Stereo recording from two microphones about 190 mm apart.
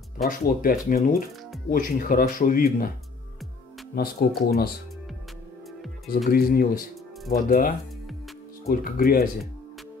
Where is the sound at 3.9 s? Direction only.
55° left (ahead or behind).